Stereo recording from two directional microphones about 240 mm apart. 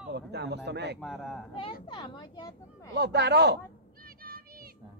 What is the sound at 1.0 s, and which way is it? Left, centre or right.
Speech, centre.